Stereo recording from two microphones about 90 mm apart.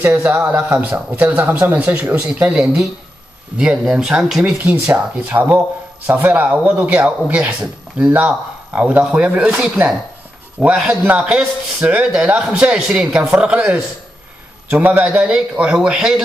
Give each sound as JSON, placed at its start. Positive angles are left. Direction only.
{"t": 0.4, "sound": "a man's voice", "side_deg": -15}
{"t": 5.1, "sound": "a man's voice", "side_deg": -15}